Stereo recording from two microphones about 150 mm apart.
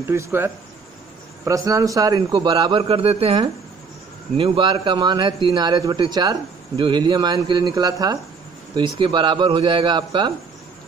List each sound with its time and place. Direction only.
0.0 s a man's voice: 15° right (ahead or behind)